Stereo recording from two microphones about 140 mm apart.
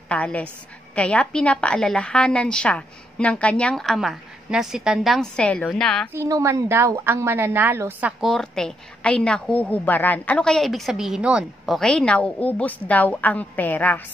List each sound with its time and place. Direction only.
0.1 s a woman's voice: 10° left (ahead or behind)
6.1 s a woman's voice: 20° right (ahead or behind)
8.2 s a woman's voice: centre (ahead or behind)